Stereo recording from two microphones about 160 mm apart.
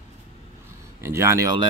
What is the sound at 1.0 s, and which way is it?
Speech, 15° right (ahead or behind).